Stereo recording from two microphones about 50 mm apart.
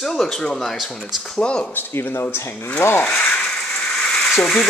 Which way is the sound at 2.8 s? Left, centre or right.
Left.